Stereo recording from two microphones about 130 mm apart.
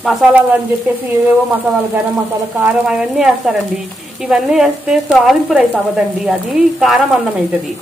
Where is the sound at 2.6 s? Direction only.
5° right (ahead or behind).